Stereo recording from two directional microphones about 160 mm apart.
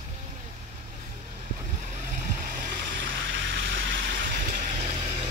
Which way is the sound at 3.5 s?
65° right (ahead or behind).